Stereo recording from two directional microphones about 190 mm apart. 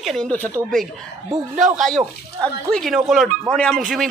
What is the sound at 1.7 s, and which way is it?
A man's voice, centre (ahead or behind).